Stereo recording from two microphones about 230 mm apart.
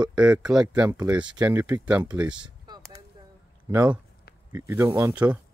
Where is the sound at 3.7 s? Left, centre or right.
Centre.